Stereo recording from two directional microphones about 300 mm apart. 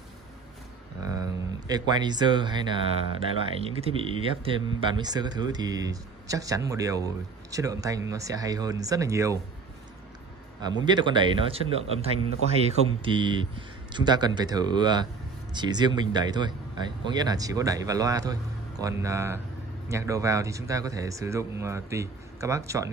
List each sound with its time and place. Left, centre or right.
1.0 s speech: centre
3.8 s speech: centre
10.6 s speech: centre